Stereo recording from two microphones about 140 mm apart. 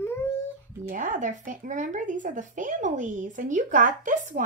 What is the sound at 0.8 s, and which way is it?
A child's voice, 65° right (ahead or behind).